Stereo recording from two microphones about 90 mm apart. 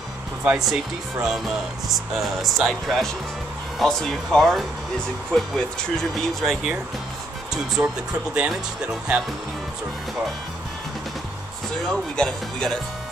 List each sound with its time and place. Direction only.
0.4 s speech: 15° right (ahead or behind)
1.2 s speech: 5° right (ahead or behind)
7.8 s speech: 20° right (ahead or behind)
11.9 s speech: 5° left (ahead or behind)